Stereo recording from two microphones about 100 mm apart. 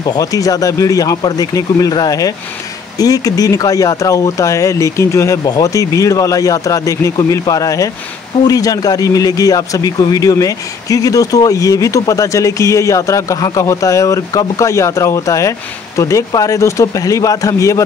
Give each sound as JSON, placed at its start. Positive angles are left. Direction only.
{"t": 0.0, "sound": "speech", "side_deg": 40}